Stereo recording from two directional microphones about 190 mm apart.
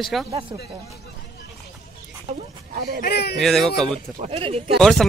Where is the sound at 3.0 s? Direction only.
55° left (ahead or behind).